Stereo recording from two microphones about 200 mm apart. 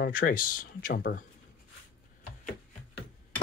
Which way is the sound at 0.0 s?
45° left (ahead or behind).